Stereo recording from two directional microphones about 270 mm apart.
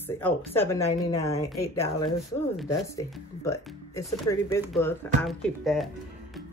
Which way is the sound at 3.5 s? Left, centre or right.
Centre.